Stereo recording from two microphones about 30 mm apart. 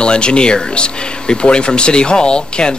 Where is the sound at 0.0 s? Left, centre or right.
Left.